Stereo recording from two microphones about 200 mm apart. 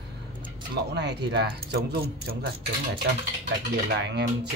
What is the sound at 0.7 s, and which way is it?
Speech, 55° right (ahead or behind).